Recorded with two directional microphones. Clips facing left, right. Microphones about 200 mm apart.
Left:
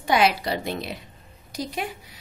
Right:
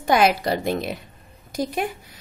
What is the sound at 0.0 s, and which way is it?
A woman's voice, 50° right (ahead or behind).